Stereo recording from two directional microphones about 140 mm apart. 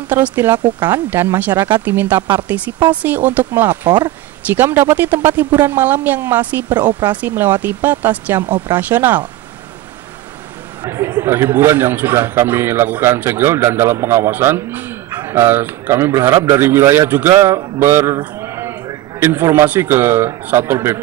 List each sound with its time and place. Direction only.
0.1 s a woman's voice: 15° right (ahead or behind)
10.8 s a man's voice: 20° right (ahead or behind)